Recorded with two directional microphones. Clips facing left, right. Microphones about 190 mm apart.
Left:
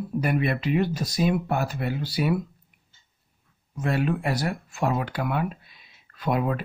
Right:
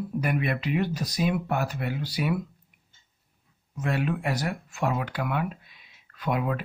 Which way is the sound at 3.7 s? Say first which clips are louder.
Left 3 dB; 35° left (ahead or behind).